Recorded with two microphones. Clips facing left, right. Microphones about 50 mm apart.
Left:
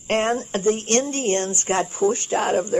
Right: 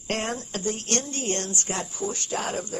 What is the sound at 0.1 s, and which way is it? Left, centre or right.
Speech, left.